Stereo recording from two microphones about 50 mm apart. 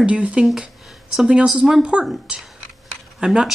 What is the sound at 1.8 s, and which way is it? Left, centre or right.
Speech, right.